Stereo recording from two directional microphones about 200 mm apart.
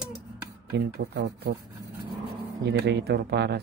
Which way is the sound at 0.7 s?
55° right (ahead or behind).